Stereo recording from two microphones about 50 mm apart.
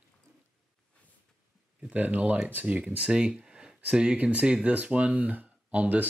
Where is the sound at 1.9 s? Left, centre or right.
Right.